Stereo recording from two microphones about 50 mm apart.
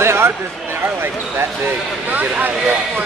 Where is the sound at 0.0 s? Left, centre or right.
Right.